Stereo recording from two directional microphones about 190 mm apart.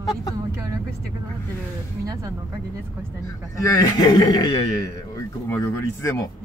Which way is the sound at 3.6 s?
20° left (ahead or behind).